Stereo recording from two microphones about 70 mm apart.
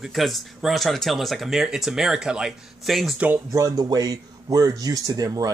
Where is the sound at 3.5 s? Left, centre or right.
Right.